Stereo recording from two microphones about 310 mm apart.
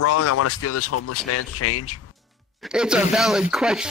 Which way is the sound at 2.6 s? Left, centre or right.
Centre.